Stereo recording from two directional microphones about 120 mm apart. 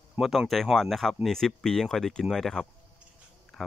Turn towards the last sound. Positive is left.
turn(degrees=0)  # may be behind; listen again after turning